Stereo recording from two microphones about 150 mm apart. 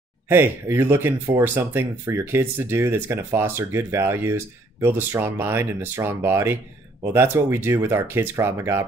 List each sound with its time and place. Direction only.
0.3 s speech: 15° right (ahead or behind)